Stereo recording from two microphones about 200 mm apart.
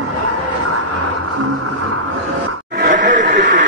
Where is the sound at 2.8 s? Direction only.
40° right (ahead or behind).